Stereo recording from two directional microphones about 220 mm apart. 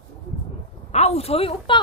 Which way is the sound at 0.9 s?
30° left (ahead or behind).